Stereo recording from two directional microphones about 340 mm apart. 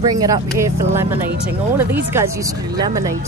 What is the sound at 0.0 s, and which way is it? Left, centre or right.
Speech, centre.